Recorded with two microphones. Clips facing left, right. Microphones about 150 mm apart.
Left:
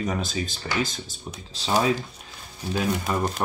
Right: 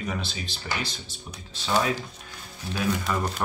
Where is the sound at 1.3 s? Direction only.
35° left (ahead or behind).